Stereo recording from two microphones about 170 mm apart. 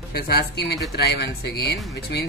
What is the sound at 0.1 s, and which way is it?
Speech, 65° left (ahead or behind).